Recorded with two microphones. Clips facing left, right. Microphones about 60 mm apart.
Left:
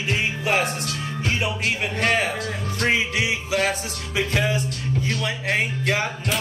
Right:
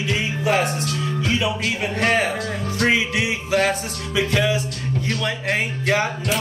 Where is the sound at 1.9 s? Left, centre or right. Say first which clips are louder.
Right 4 dB; right.